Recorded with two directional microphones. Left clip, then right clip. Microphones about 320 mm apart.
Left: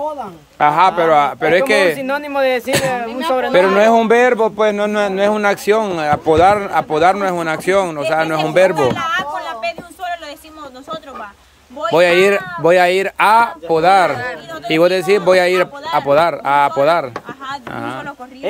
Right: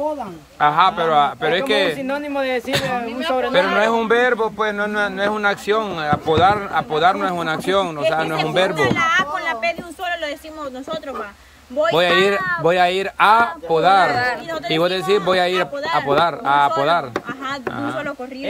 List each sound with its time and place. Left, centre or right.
0.6 s speech: centre
8.7 s speech: centre
11.9 s speech: centre